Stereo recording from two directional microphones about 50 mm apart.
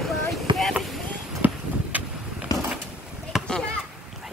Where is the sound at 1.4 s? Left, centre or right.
Right.